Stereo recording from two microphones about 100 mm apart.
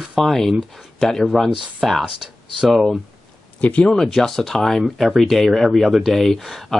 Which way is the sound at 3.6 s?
15° left (ahead or behind).